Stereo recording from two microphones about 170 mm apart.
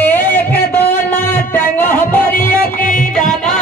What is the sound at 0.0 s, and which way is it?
Music, 10° left (ahead or behind).